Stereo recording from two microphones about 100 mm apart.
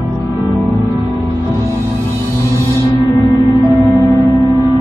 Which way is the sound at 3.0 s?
35° left (ahead or behind).